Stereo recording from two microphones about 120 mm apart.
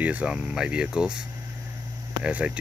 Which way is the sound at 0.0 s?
10° right (ahead or behind).